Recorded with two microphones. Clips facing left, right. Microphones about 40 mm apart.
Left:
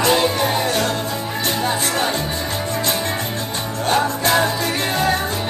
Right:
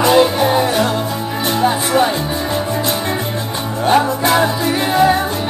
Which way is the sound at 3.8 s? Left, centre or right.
Centre.